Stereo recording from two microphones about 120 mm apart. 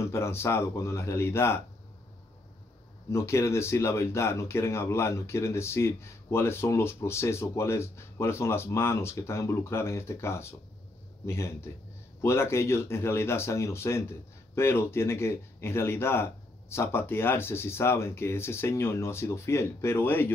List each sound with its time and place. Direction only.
0.0 s speech: 20° left (ahead or behind)
3.1 s speech: 20° left (ahead or behind)